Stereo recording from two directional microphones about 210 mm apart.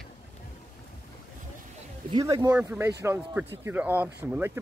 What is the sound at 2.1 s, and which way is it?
Speech, 20° right (ahead or behind).